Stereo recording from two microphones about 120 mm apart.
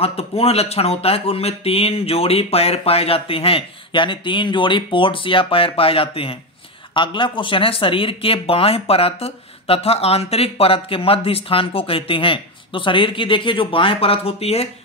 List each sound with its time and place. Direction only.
0.0 s speech: 55° left (ahead or behind)